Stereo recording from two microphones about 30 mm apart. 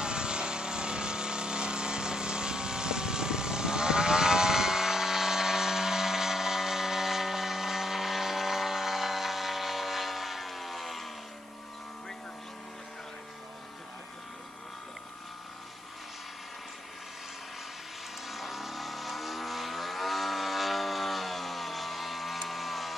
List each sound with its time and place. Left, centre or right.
0.0 s vehicle: right; by 11.1 s centre
18.2 s vehicle: centre
22.5 s a sound: centre